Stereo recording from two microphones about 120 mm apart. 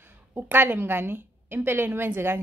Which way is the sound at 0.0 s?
20° right (ahead or behind).